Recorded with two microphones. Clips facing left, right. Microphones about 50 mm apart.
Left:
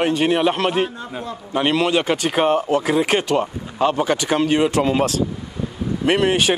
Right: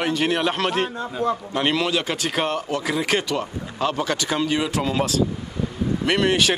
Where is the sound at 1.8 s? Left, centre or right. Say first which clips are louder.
Left 5 dB; left.